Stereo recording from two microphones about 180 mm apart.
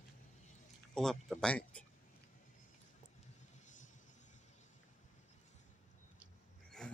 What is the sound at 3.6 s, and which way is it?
Vehicle, 45° left (ahead or behind).